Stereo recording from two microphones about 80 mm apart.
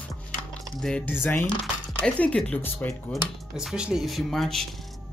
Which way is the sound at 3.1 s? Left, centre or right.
Centre.